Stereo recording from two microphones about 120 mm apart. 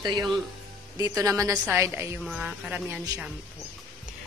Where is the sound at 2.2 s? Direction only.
5° right (ahead or behind).